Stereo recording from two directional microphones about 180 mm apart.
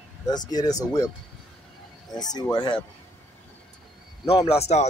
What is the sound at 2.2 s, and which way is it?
Speech, 20° left (ahead or behind).